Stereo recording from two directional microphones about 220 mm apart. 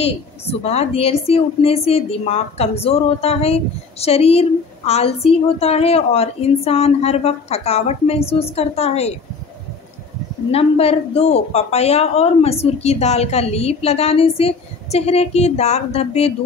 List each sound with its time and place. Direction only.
0.0 s speech: 30° left (ahead or behind)
10.5 s speech: 25° left (ahead or behind)